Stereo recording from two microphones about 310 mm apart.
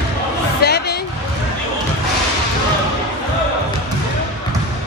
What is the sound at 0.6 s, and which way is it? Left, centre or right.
Music, left.